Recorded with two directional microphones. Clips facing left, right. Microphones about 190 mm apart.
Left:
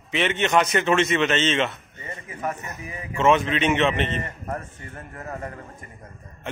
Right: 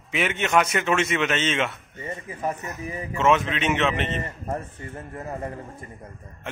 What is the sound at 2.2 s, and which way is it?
Speech, 30° right (ahead or behind).